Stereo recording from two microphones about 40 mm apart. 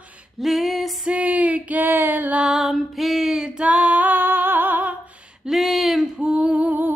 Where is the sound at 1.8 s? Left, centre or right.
Right.